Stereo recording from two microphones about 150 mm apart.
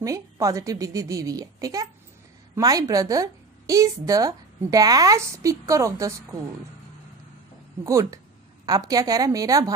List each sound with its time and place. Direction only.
0.0 s speech: 20° right (ahead or behind)
7.8 s speech: 20° right (ahead or behind)